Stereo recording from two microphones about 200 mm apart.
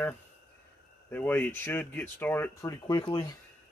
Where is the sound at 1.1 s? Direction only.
10° left (ahead or behind).